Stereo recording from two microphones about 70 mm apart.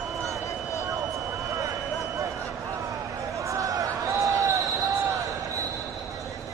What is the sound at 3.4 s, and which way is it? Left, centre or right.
Basketball bounce, right.